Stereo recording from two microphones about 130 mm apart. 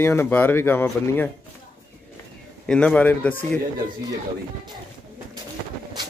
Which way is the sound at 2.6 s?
5° left (ahead or behind).